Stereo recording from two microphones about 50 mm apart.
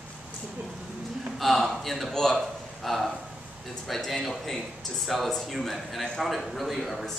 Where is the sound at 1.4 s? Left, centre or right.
Centre.